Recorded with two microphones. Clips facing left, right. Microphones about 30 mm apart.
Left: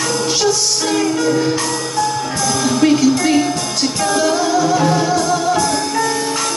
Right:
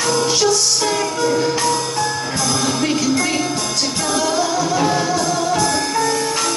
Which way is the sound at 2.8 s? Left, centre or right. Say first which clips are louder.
Left 9 dB; centre.